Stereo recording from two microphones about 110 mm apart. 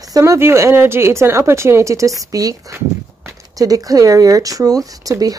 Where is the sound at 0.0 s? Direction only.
30° right (ahead or behind).